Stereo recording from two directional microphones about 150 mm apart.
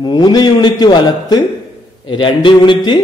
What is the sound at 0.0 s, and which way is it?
A man's voice, 25° left (ahead or behind).